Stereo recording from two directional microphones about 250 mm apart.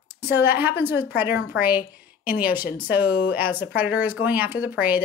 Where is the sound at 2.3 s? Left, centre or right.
Left.